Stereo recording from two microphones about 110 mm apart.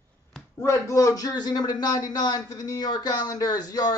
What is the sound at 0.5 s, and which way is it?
A man's voice, 25° left (ahead or behind).